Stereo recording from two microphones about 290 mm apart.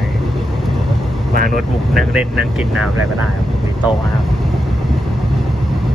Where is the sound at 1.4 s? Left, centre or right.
Right.